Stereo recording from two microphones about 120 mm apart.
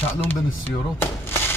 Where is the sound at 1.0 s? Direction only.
20° left (ahead or behind).